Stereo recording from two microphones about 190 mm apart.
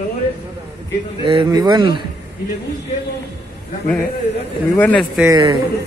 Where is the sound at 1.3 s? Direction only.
25° right (ahead or behind).